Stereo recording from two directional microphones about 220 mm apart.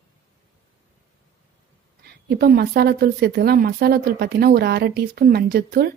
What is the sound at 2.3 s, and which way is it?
Speech, 45° right (ahead or behind).